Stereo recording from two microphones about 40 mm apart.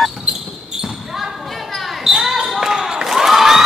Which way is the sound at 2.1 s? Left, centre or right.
Centre.